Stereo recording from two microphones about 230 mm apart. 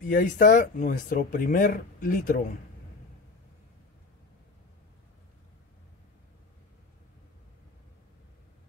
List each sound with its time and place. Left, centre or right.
0.1 s speech: left